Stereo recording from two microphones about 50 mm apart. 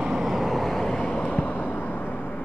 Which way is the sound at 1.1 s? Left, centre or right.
Left.